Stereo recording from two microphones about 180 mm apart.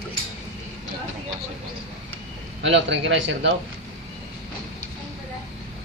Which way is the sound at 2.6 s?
90° right.